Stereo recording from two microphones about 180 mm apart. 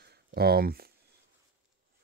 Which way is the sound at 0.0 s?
60° right (ahead or behind).